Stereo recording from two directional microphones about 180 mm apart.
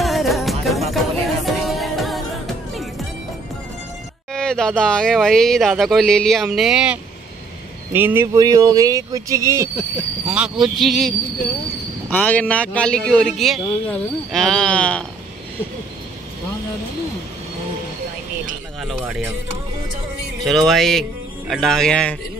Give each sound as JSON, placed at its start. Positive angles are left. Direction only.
{"t": 0.0, "sound": "music", "side_deg": 0}
{"t": 4.3, "sound": "speech", "side_deg": 5}
{"t": 9.8, "sound": "speech", "side_deg": -5}
{"t": 18.8, "sound": "speech", "side_deg": 0}
{"t": 20.4, "sound": "speech", "side_deg": 0}